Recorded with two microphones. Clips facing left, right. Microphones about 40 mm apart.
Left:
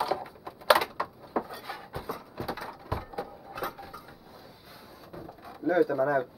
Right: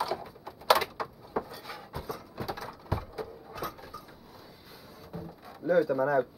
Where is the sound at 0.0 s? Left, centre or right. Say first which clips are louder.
Left 3 dB; centre.